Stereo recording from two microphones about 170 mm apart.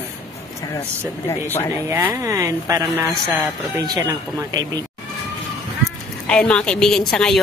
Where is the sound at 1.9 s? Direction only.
15° right (ahead or behind).